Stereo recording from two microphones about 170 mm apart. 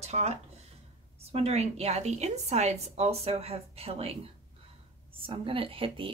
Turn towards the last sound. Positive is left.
turn(degrees=-30)  # may be behind; listen again after turning